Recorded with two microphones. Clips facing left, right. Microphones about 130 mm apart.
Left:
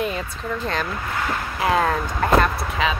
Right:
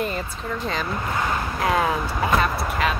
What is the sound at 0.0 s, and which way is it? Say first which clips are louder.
Speech: left 1 dB; centre (ahead or behind).